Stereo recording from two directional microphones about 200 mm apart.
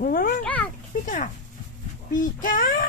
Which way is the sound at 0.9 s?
40° left (ahead or behind).